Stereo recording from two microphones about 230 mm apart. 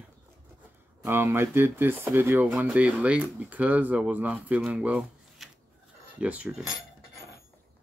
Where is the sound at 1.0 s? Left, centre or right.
Centre.